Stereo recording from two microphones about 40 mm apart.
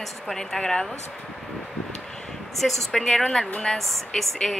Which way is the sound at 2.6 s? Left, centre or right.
Centre.